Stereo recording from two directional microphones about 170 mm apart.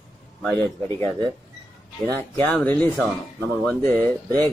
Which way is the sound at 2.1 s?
10° left (ahead or behind).